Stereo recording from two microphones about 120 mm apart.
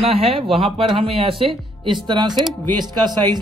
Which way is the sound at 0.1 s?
55° right (ahead or behind).